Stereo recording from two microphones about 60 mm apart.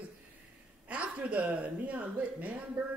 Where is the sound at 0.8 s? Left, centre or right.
Right.